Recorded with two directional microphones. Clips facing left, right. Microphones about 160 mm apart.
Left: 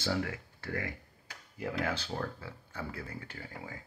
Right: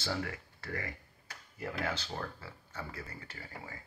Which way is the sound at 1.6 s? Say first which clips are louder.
Left 3 dB; 10° left (ahead or behind).